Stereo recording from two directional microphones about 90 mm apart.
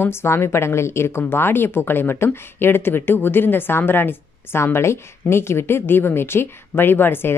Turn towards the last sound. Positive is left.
turn(degrees=25)  # may be behind; listen again after turning